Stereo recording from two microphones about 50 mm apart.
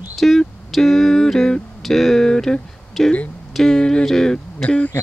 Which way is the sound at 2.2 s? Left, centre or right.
Centre.